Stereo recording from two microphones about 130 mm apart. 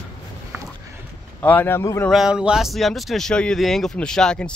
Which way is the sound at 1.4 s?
15° left (ahead or behind).